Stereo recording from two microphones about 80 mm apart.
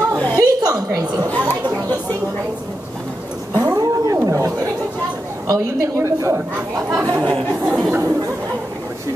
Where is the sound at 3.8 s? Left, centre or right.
Right.